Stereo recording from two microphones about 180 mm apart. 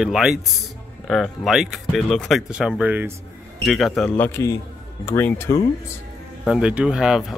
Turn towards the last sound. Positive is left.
turn(degrees=-5)  # may be behind; listen again after turning